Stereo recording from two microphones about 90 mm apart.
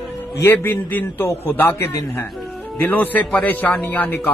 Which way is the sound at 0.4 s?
25° left (ahead or behind).